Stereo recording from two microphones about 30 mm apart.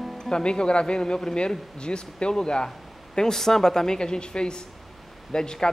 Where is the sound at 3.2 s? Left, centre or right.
Centre.